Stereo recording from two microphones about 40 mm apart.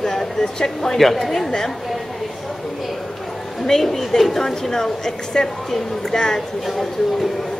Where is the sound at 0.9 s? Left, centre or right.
Centre.